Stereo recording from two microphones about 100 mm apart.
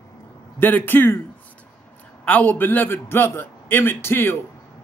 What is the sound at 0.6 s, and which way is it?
Speech, 20° left (ahead or behind).